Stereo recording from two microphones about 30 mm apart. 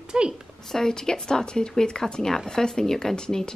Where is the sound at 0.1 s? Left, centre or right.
Right.